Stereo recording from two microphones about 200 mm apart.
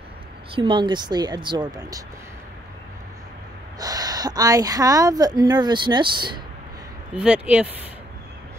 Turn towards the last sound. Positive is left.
turn(degrees=-5)  # may be behind; listen again after turning